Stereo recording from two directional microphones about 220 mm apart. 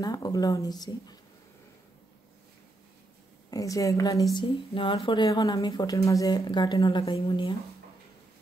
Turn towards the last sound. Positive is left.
turn(degrees=20)  # may be behind; listen again after turning